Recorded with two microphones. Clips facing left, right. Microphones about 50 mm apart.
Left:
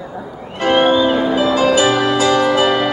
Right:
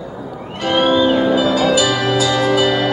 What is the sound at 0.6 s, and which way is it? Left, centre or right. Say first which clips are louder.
Music: left 2 dB; left.